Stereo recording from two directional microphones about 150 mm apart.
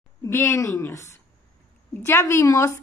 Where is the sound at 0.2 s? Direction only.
20° left (ahead or behind).